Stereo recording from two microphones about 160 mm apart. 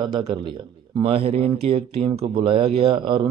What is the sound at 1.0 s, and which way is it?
Speech, 35° right (ahead or behind).